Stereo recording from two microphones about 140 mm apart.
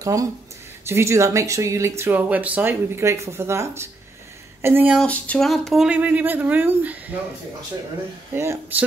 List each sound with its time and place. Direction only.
0.0 s speech: 25° right (ahead or behind)
5.0 s speech: 10° left (ahead or behind); by 7.2 s 10° right (ahead or behind)
8.4 s speech: 15° right (ahead or behind)